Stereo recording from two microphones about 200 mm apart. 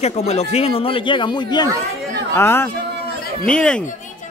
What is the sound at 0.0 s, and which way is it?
A man's voice, 35° left (ahead or behind).